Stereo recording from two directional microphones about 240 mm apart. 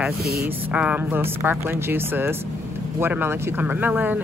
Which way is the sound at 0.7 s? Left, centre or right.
Centre.